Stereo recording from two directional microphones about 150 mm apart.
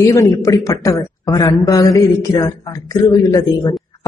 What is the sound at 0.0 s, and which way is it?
A woman's voice, 20° left (ahead or behind).